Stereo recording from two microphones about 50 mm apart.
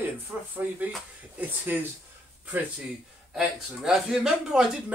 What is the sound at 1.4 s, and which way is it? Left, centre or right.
Speech, right.